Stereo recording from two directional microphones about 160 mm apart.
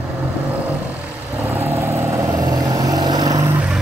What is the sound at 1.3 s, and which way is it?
Vehicle, 10° right (ahead or behind).